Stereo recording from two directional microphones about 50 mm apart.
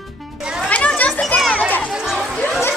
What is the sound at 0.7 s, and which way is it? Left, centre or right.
Children playing, left.